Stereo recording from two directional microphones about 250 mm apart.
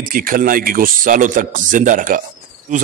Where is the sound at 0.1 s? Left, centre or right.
Right.